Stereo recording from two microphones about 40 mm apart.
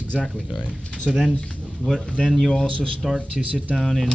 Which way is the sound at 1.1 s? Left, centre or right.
Centre.